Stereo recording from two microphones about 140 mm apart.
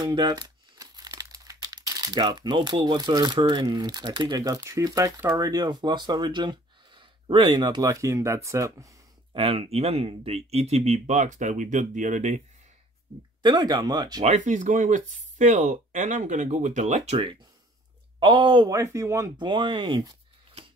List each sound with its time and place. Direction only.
0.1 s speech: 30° right (ahead or behind)
9.3 s speech: 40° right (ahead or behind); by 12.4 s 65° right (ahead or behind)
13.4 s speech: 30° right (ahead or behind)
14.2 s speech: 60° right (ahead or behind)
18.2 s speech: 35° right (ahead or behind)
18.7 s speech: 20° right (ahead or behind)
19.3 s speech: 35° right (ahead or behind)